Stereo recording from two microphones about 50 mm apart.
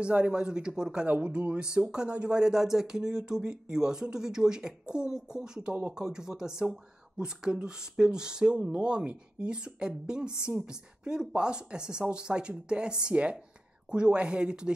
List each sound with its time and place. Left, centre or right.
0.0 s speech: right